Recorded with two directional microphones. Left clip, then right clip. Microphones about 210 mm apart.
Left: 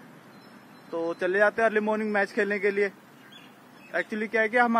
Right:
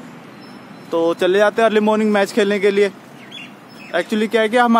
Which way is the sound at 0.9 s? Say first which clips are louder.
Right 11 dB; 10° right (ahead or behind).